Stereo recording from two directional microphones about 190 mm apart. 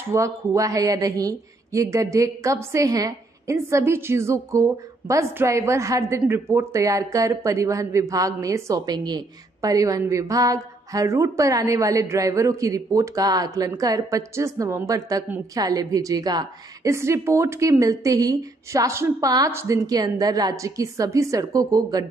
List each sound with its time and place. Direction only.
0.1 s a woman's voice: 15° right (ahead or behind)